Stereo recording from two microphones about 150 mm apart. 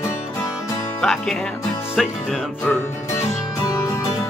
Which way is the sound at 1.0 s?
Centre (ahead or behind).